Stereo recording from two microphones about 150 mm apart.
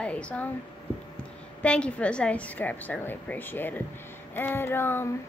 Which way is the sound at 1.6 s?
10° left (ahead or behind).